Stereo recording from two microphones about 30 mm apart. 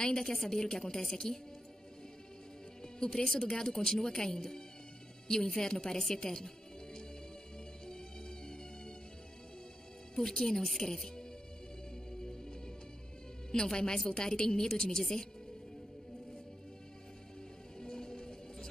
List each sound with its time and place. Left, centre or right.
0.2 s a woman's voice: centre
2.8 s music: left
3.4 s a woman's voice: left
7.8 s music: left
10.2 s a woman's voice: centre
12.1 s music: left
13.5 s a woman's voice: left
17.7 s music: left